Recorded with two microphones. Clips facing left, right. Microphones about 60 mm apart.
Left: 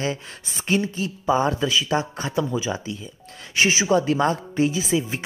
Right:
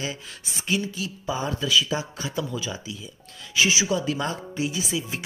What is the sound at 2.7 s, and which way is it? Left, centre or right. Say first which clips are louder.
Speech: left 5 dB; left.